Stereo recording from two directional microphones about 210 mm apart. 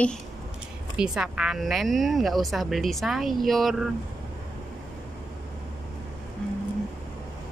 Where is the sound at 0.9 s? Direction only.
5° right (ahead or behind).